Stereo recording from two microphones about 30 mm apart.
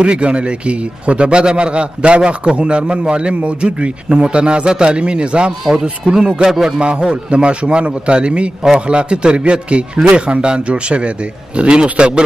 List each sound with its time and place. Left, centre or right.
0.0 s a man's voice: right
5.8 s speech: right
6.8 s a man's voice: right